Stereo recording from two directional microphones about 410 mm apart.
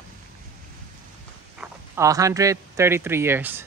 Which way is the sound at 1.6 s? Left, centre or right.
Centre.